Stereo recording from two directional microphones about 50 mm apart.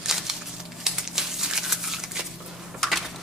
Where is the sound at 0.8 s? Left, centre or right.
Centre.